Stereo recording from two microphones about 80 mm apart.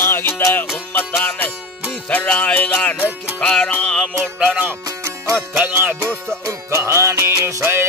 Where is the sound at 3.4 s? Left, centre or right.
Centre.